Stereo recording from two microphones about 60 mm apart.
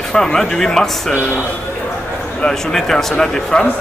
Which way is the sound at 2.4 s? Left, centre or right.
Centre.